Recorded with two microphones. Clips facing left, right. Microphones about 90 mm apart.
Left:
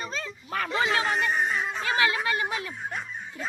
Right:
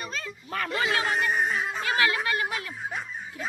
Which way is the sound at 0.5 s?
Centre (ahead or behind).